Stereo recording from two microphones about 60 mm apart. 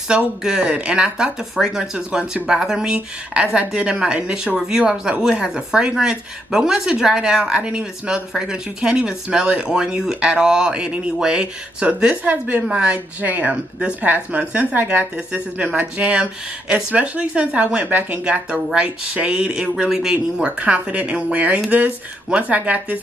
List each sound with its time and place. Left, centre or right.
0.4 s speech: centre
12.9 s speech: right
18.2 s speech: centre
19.7 s speech: centre; by 22.9 s right